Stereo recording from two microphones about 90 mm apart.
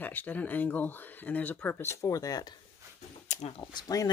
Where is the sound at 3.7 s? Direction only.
50° left (ahead or behind).